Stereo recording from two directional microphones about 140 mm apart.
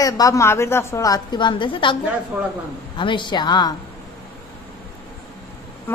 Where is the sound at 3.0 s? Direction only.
35° left (ahead or behind).